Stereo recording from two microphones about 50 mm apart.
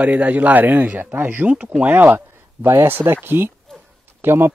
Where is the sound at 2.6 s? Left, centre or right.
Right.